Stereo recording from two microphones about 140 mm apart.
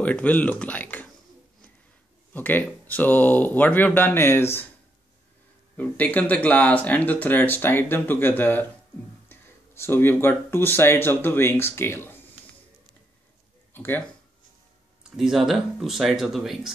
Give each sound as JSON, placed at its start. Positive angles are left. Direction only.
{"t": 0.0, "sound": "speech", "side_deg": 10}
{"t": 2.3, "sound": "speech", "side_deg": 10}
{"t": 5.8, "sound": "speech", "side_deg": 10}
{"t": 13.7, "sound": "speech", "side_deg": 15}
{"t": 15.0, "sound": "speech", "side_deg": -5}